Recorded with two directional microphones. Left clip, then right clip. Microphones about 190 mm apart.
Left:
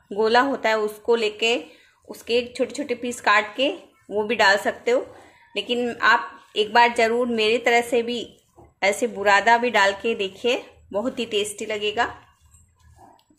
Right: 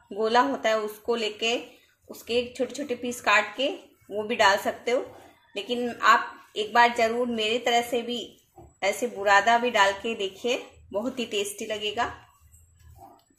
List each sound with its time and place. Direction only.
0.1 s a woman's voice: 25° left (ahead or behind)